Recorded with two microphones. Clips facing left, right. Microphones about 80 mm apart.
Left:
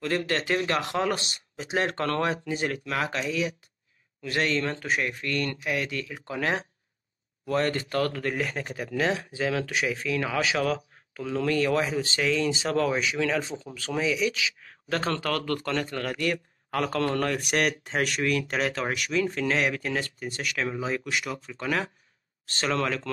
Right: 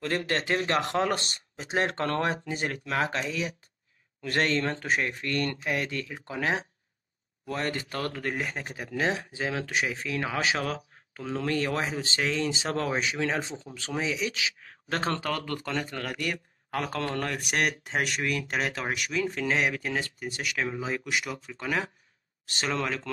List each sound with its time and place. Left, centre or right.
0.0 s speech: right; by 17.4 s centre
18.5 s speech: centre
18.9 s speech: centre